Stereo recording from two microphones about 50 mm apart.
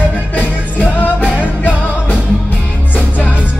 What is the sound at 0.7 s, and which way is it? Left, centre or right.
Music, left.